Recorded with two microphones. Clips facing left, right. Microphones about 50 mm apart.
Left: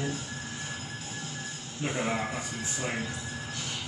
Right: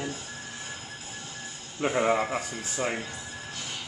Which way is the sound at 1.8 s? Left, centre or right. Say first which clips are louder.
Right 6 dB; right.